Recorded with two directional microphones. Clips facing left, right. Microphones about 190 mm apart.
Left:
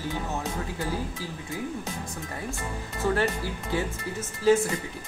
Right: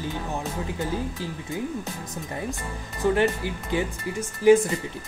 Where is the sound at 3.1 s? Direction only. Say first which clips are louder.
Right 3 dB; 15° right (ahead or behind).